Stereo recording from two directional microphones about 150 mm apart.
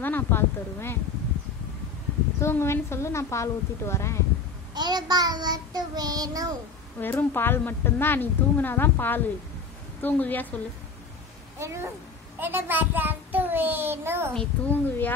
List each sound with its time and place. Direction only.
0.0 s a woman's voice: 15° left (ahead or behind)
2.4 s a woman's voice: 15° left (ahead or behind)
4.7 s child singing: 30° right (ahead or behind)
7.0 s a woman's voice: 15° left (ahead or behind)
11.6 s child singing: 20° right (ahead or behind)
14.3 s a woman's voice: 10° left (ahead or behind)